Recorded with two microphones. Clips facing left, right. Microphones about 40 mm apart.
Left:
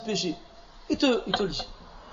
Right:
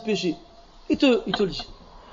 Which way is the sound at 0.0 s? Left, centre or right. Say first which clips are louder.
Right 5 dB; right.